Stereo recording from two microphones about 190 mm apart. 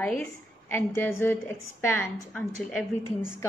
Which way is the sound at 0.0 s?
10° left (ahead or behind).